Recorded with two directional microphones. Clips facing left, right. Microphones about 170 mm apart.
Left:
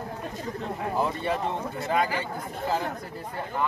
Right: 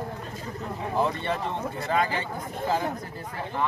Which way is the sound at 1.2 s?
10° left (ahead or behind).